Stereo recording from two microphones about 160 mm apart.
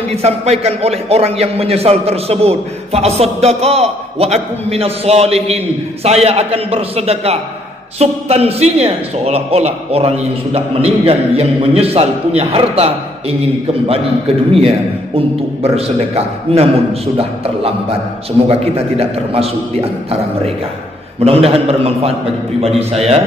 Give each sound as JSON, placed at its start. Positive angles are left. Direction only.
{"t": 0.1, "sound": "a man's voice", "side_deg": -40}
{"t": 15.1, "sound": "a man's voice", "side_deg": -40}